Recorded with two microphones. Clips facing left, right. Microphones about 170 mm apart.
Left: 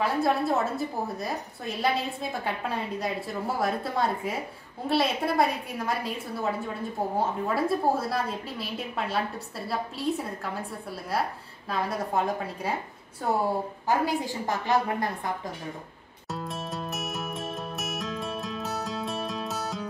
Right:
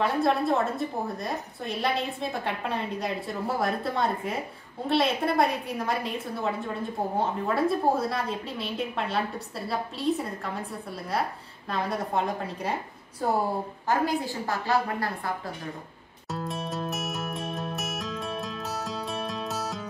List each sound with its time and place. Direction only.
0.0 s a woman's voice: centre (ahead or behind)
13.8 s a woman's voice: 15° left (ahead or behind)
16.3 s music: centre (ahead or behind)